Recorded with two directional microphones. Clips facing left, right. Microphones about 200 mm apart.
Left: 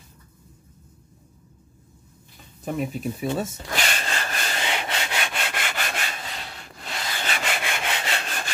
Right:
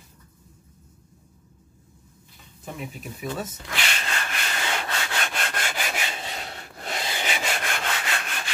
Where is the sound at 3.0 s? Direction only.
30° left (ahead or behind).